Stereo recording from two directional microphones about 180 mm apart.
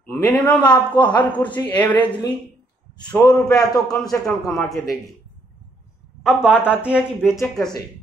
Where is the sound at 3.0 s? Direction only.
20° left (ahead or behind).